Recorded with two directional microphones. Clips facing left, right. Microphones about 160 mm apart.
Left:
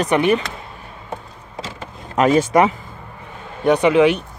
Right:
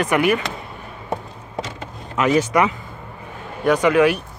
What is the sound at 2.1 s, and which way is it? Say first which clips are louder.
Speech: left 3 dB; 30° left (ahead or behind).